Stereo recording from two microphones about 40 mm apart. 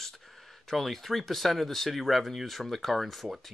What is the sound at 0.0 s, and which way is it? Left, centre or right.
Speech, centre.